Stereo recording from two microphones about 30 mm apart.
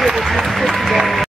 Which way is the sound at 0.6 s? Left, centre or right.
Centre.